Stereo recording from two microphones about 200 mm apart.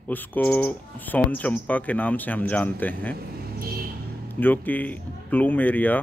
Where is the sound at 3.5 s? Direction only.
50° right (ahead or behind).